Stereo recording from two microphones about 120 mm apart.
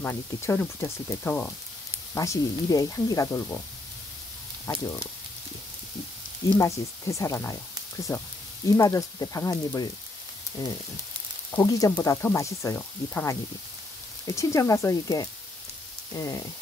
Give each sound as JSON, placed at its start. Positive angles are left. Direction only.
{"t": 0.1, "sound": "speech", "side_deg": 20}
{"t": 2.1, "sound": "speech", "side_deg": 30}
{"t": 4.6, "sound": "speech", "side_deg": 25}
{"t": 6.6, "sound": "speech", "side_deg": 25}
{"t": 8.6, "sound": "speech", "side_deg": 25}
{"t": 11.6, "sound": "speech", "side_deg": 30}